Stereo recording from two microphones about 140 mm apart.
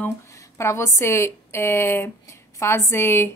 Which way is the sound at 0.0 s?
20° left (ahead or behind).